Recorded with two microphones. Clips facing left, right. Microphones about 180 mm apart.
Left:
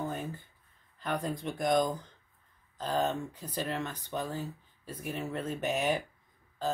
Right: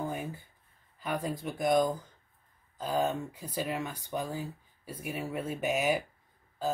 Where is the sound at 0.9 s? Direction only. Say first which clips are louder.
Even; 5° right (ahead or behind).